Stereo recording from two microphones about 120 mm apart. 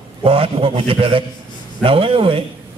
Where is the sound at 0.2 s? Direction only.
50° right (ahead or behind).